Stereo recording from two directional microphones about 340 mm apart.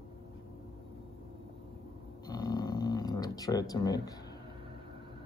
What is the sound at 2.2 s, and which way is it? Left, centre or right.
Snoring, centre.